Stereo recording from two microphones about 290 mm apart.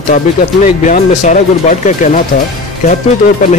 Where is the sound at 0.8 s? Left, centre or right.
Left.